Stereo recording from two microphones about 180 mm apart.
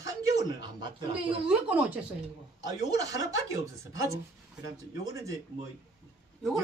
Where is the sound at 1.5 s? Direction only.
5° right (ahead or behind).